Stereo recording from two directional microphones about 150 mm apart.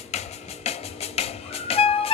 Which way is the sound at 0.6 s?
45° left (ahead or behind).